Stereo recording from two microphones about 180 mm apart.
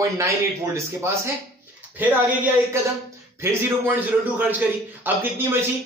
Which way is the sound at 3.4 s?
15° right (ahead or behind).